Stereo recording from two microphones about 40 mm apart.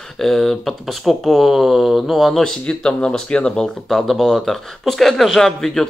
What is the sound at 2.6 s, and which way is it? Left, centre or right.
Speech, left.